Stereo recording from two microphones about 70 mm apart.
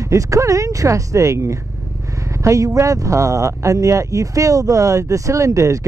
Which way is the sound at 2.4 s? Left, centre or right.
Right.